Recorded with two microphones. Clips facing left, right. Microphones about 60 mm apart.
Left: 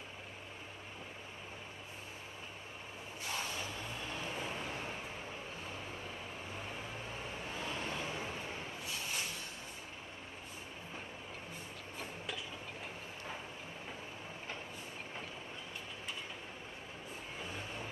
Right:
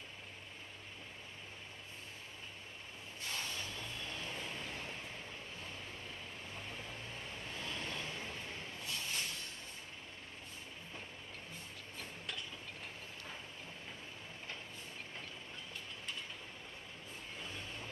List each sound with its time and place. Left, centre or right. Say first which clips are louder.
3.3 s vehicle: left 3 dB; centre
17.4 s vehicle: left 3 dB; centre